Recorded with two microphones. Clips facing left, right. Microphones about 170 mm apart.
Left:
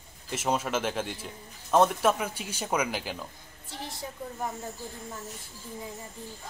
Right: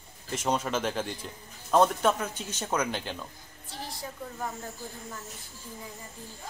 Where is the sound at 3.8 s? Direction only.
25° left (ahead or behind).